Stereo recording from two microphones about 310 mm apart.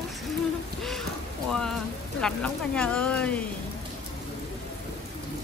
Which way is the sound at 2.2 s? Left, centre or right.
Centre.